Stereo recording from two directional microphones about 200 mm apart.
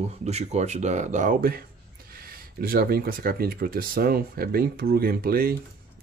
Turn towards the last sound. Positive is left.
turn(degrees=-50)  # may be behind; listen again after turning